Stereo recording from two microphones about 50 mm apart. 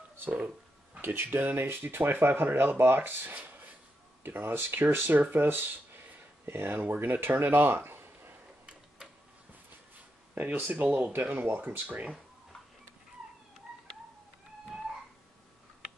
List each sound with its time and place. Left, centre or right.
1.0 s speech: right
10.3 s speech: right
11.8 s speech: right